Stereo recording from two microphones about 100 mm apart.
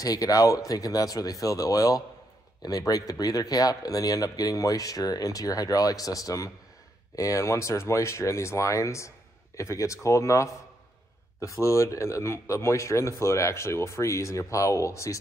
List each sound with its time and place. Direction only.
0.0 s speech: 35° left (ahead or behind)